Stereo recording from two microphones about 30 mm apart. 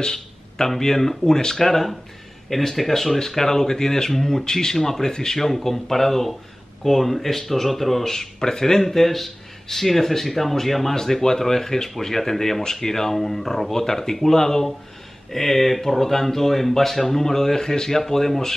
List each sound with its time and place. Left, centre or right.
0.0 s speech: centre